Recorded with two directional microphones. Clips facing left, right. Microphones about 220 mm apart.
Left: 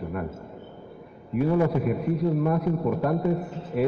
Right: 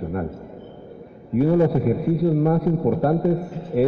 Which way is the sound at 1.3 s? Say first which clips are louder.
Right 5 dB; 40° right (ahead or behind).